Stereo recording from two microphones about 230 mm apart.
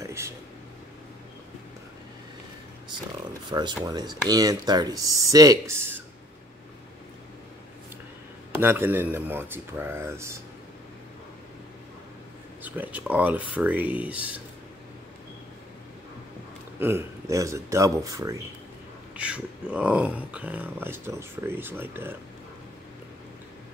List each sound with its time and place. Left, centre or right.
0.0 s a sound: centre
3.4 s speech: centre
8.5 s speech: centre
12.6 s speech: centre
16.7 s speech: centre